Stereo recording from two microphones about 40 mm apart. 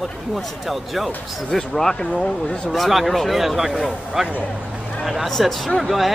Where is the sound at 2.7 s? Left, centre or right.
Centre.